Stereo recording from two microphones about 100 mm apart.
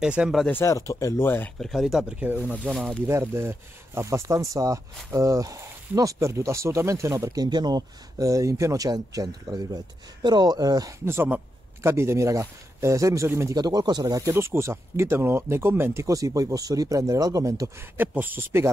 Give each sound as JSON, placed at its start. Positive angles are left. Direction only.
{"t": 0.0, "sound": "speech", "side_deg": -10}
{"t": 0.5, "sound": "speech", "side_deg": 30}
{"t": 1.6, "sound": "speech", "side_deg": 0}
{"t": 2.1, "sound": "speech", "side_deg": -15}
{"t": 2.7, "sound": "speech", "side_deg": 5}
{"t": 3.1, "sound": "speech", "side_deg": -25}
{"t": 11.1, "sound": "speech", "side_deg": -20}
{"t": 13.6, "sound": "speech", "side_deg": -45}
{"t": 17.9, "sound": "speech", "side_deg": -15}